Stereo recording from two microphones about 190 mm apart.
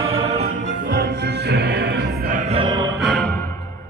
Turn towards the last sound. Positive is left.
turn(degrees=5)  # may be behind; listen again after turning